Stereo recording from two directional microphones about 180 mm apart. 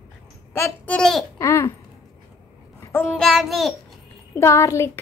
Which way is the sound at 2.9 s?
5° left (ahead or behind).